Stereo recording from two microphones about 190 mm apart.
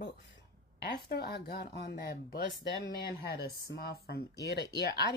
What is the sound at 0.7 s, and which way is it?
A woman's voice, 60° left (ahead or behind).